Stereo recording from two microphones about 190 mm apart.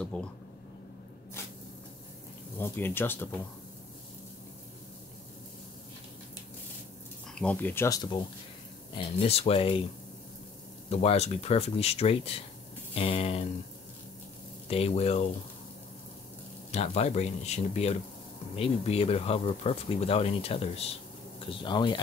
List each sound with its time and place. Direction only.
0.0 s speech: 5° left (ahead or behind)
2.6 s speech: 10° left (ahead or behind)
7.3 s speech: 10° left (ahead or behind)
8.9 s speech: 30° left (ahead or behind)
10.9 s speech: 35° left (ahead or behind)
14.7 s speech: 30° left (ahead or behind)
16.7 s speech: 35° left (ahead or behind)